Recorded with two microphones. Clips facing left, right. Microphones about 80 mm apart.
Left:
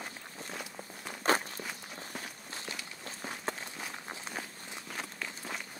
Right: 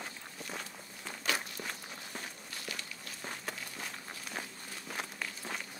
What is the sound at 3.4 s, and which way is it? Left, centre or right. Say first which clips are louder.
Walk: left 4 dB; left.